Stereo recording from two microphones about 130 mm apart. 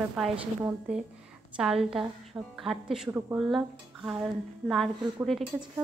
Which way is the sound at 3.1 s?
15° right (ahead or behind).